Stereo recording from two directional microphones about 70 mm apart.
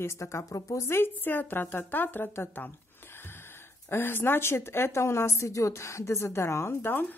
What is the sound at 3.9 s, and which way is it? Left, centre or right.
A woman's voice, left.